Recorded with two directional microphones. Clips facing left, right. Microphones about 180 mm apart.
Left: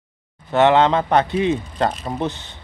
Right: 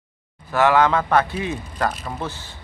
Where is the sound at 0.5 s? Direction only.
25° left (ahead or behind).